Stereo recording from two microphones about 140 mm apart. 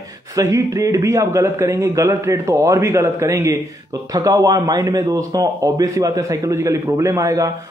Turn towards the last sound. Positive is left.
turn(degrees=-20)  # may be behind; listen again after turning